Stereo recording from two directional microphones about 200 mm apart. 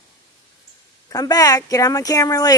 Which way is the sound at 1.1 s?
20° left (ahead or behind).